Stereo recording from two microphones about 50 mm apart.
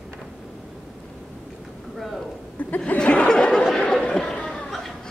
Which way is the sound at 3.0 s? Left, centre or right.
Left.